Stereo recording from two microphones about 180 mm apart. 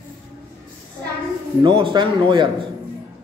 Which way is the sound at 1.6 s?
25° right (ahead or behind).